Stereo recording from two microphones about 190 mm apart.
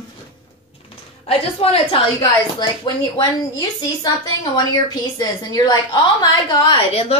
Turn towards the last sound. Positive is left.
turn(degrees=30)  # may be behind; listen again after turning